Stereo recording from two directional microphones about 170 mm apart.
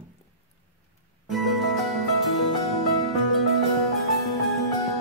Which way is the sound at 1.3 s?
Centre (ahead or behind).